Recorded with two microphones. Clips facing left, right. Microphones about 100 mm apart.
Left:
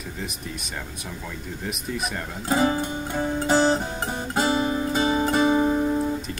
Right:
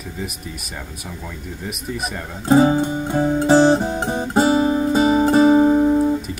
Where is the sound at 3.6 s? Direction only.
30° right (ahead or behind).